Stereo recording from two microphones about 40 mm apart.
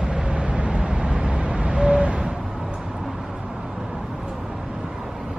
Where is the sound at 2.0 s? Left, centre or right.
Centre.